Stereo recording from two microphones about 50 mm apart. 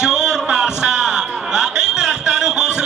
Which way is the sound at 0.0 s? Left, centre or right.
Centre.